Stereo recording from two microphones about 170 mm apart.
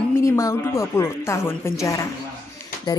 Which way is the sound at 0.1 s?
20° left (ahead or behind).